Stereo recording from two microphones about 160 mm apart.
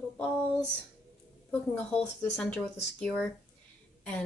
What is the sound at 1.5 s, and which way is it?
Speech, 10° left (ahead or behind).